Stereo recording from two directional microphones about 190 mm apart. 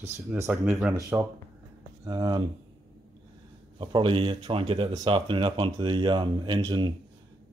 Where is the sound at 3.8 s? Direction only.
25° right (ahead or behind).